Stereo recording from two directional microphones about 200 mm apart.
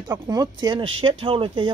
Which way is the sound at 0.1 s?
20° right (ahead or behind).